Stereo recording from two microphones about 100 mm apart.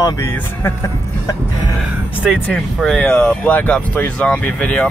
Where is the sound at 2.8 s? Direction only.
5° left (ahead or behind).